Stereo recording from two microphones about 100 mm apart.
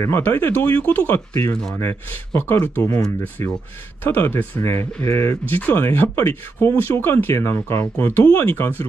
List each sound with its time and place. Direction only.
0.0 s speech: 25° left (ahead or behind)
1.5 s speech: 5° left (ahead or behind)
1.8 s speech: 20° left (ahead or behind)